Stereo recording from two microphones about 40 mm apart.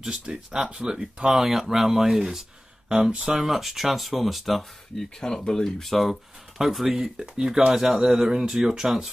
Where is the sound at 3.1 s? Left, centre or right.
Right.